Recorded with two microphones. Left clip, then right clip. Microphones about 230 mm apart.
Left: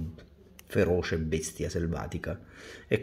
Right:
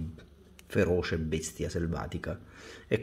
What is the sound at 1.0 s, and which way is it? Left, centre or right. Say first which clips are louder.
Speech: left 1 dB; centre.